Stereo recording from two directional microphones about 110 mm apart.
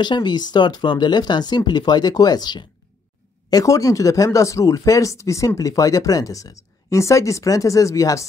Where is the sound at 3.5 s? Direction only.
30° left (ahead or behind).